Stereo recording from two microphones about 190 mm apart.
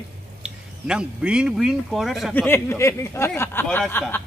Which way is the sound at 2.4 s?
15° left (ahead or behind).